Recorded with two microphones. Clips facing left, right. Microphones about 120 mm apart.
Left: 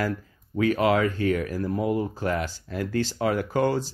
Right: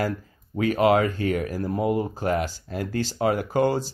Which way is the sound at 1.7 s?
20° right (ahead or behind).